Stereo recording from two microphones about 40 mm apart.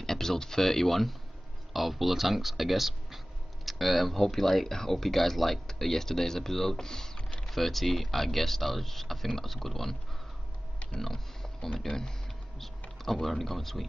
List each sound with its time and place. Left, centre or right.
0.0 s speech: centre
7.2 s typing: left
7.4 s speech: centre
11.8 s speech: centre
13.0 s speech: centre